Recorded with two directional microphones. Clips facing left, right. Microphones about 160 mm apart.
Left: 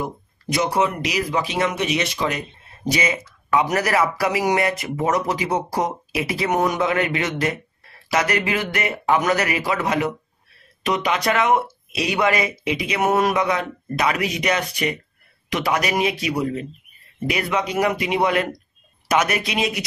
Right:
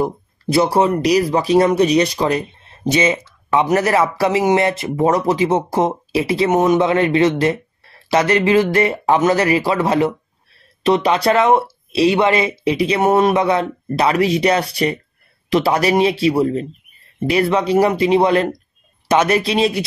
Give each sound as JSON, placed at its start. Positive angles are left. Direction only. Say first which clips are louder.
{"t": 0.0, "sound": "speech", "louder": "right 8 dB", "side_deg": -30}